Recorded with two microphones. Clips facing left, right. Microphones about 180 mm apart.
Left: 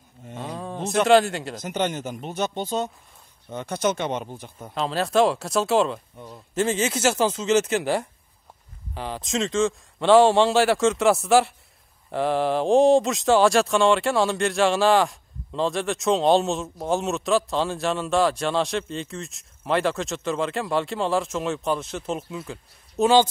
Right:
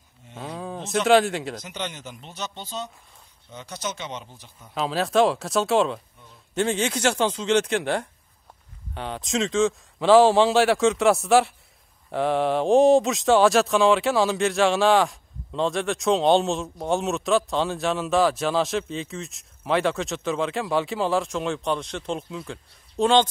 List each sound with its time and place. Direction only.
0.4 s a sound: centre (ahead or behind)
1.0 s speech: centre (ahead or behind)
1.6 s speech: 50° left (ahead or behind)
4.7 s speech: centre (ahead or behind)
6.1 s speech: 65° left (ahead or behind)
6.5 s speech: centre (ahead or behind)